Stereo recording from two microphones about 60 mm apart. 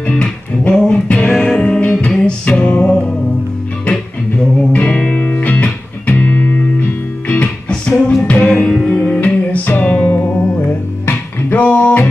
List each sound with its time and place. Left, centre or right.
0.0 s music: centre
1.9 s music: left
2.1 s music: centre
4.6 s music: left
8.6 s music: centre
9.0 s music: left